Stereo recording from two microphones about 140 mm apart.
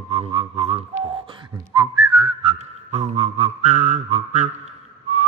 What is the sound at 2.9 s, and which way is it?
Mantra, 50° right (ahead or behind).